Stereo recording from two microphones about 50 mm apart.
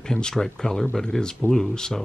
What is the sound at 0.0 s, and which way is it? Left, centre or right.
Speech, centre.